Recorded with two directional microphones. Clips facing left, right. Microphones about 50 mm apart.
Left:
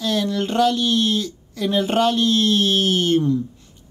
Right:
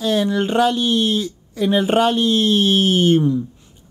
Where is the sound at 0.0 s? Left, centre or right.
Centre.